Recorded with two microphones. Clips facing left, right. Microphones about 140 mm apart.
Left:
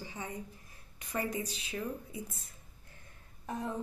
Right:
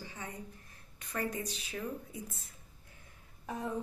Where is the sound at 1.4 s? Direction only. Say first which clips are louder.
Left 1 dB; centre (ahead or behind).